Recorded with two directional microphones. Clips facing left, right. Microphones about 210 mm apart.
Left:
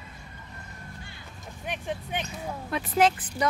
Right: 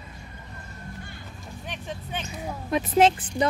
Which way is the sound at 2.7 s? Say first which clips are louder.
Right 4 dB; 20° right (ahead or behind).